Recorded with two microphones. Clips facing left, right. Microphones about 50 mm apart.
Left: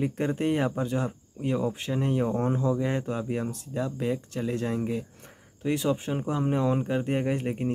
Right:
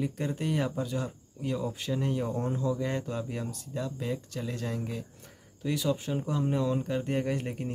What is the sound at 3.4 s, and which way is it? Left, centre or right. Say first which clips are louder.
Speech: left 5 dB; left.